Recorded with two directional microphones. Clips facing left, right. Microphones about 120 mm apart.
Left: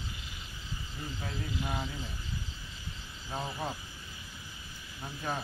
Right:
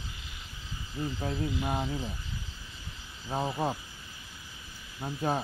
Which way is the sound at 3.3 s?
30° right (ahead or behind).